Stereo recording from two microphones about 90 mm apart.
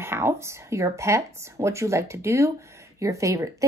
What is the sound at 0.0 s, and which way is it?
Speech, 25° right (ahead or behind).